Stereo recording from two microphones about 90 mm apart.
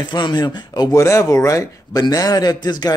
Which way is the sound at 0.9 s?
35° left (ahead or behind).